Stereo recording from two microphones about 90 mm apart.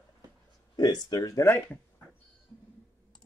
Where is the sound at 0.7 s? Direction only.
45° left (ahead or behind).